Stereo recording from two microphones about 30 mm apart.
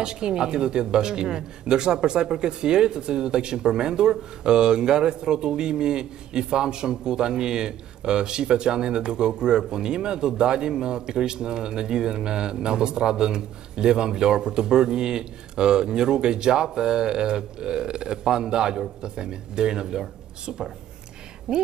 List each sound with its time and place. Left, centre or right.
0.0 s speech: right